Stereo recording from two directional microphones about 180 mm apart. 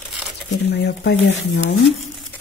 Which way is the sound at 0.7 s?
70° left (ahead or behind).